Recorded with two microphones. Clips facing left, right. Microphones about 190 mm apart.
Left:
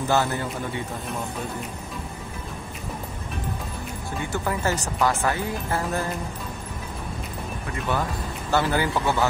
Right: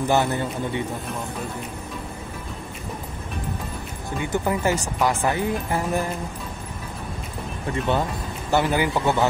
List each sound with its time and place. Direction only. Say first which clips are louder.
0.1 s speech: right 1 dB; 20° right (ahead or behind)
4.2 s speech: right 4 dB; 20° right (ahead or behind)
7.9 s speech: even; 20° right (ahead or behind)